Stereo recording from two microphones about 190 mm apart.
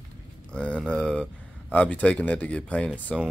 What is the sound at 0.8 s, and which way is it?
Speech, 5° left (ahead or behind).